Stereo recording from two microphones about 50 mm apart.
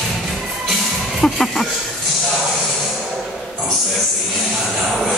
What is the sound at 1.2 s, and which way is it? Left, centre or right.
Music, centre.